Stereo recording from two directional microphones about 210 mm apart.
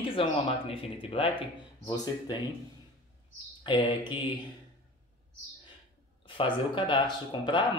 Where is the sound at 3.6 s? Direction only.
20° left (ahead or behind).